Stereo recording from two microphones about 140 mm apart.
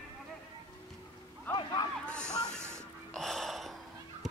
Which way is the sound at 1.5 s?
30° left (ahead or behind).